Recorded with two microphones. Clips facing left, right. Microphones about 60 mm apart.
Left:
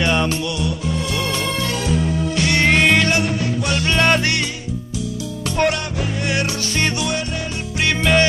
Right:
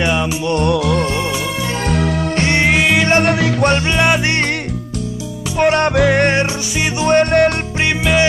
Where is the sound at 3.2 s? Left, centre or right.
Right.